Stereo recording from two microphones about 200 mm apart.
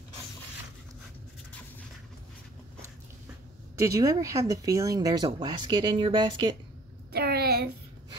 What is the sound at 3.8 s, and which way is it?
Speech, 15° right (ahead or behind).